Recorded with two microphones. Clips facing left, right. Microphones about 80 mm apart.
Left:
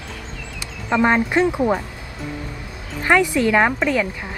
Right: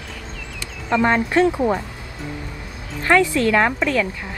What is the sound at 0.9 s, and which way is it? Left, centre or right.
Speech, centre.